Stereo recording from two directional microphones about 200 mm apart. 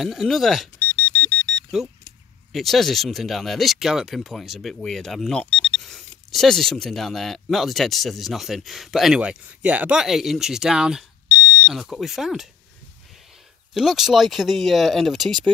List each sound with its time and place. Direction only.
0.0 s speech: centre (ahead or behind)
0.8 s a sound: 10° left (ahead or behind)
2.5 s speech: centre (ahead or behind)
13.7 s speech: centre (ahead or behind)